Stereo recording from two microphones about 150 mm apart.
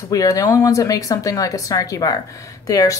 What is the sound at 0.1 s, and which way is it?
Speech, 25° left (ahead or behind).